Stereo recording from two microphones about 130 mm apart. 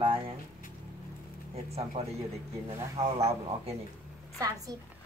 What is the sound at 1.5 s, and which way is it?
Speech, 50° right (ahead or behind).